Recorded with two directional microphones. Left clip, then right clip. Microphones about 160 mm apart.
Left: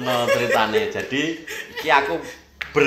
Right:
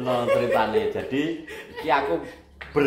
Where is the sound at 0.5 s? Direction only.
20° left (ahead or behind).